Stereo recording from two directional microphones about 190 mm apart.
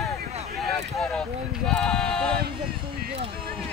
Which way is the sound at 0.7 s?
5° left (ahead or behind).